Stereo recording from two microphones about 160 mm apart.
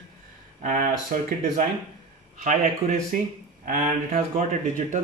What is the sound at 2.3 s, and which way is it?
A man's voice, 50° right (ahead or behind).